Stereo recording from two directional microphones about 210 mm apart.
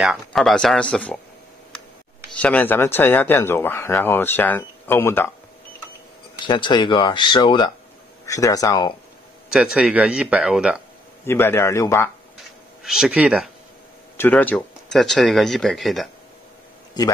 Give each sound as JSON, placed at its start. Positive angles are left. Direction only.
{"t": 0.0, "sound": "speech", "side_deg": 0}
{"t": 2.4, "sound": "speech", "side_deg": 10}
{"t": 6.4, "sound": "speech", "side_deg": 20}
{"t": 9.5, "sound": "speech", "side_deg": -5}
{"t": 11.2, "sound": "speech", "side_deg": 10}
{"t": 12.4, "sound": "a sound", "side_deg": 0}
{"t": 14.1, "sound": "speech", "side_deg": 10}